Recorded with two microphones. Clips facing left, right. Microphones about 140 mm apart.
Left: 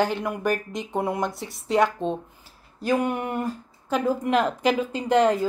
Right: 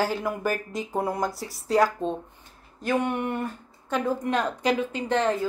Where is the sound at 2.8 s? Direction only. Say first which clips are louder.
Left 2 dB; 10° left (ahead or behind).